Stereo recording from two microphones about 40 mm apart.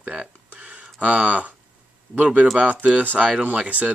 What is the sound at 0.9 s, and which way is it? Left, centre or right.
Speech, right.